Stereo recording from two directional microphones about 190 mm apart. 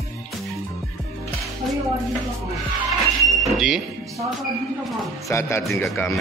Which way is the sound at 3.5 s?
Centre (ahead or behind).